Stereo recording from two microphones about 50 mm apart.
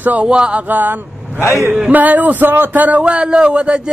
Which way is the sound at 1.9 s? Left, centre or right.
Right.